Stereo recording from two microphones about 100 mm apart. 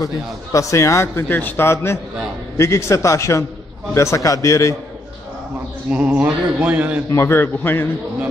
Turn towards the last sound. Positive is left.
turn(degrees=20)  # may be behind; listen again after turning